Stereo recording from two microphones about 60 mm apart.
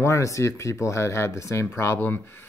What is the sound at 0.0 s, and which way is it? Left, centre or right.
Speech, left.